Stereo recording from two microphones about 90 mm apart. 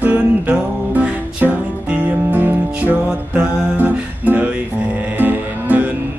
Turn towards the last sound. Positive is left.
turn(degrees=-20)  # may be behind; listen again after turning